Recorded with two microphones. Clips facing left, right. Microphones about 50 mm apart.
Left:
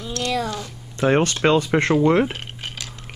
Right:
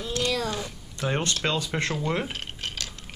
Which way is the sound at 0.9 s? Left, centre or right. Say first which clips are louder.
Left 9 dB; left.